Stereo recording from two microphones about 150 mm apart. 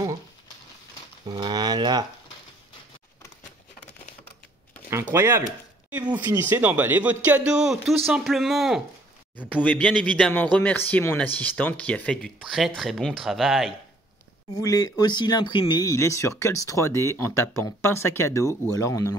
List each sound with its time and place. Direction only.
1.2 s speech: 25° right (ahead or behind)
4.8 s a man's voice: 15° right (ahead or behind); by 13.7 s centre (ahead or behind)
14.6 s speech: 25° left (ahead or behind)